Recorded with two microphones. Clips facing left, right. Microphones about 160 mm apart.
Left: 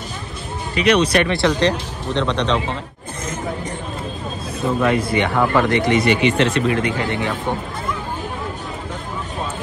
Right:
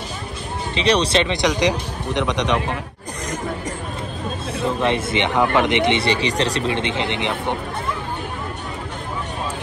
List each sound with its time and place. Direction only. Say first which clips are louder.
0.7 s speech: left 2 dB; 30° right (ahead or behind); by 2.6 s 15° right (ahead or behind)
4.6 s speech: left 3 dB; 25° right (ahead or behind)